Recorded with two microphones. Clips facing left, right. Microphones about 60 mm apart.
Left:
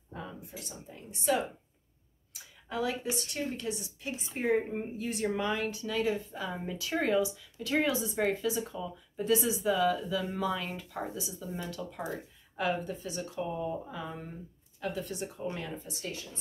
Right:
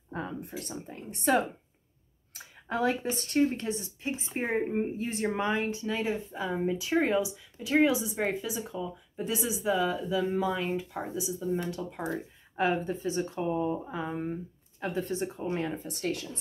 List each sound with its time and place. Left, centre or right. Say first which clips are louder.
0.1 s a woman's voice: right 7 dB; right
15.7 s speech: right 7 dB; right